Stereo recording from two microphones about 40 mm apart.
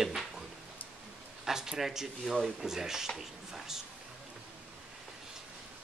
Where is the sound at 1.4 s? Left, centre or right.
Centre.